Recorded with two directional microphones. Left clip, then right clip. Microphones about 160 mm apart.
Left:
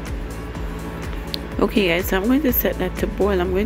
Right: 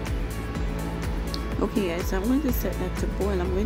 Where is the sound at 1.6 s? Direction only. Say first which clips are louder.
Left 9 dB; 25° left (ahead or behind).